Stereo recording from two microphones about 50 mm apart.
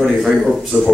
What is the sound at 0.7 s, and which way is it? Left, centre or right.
Speech, right.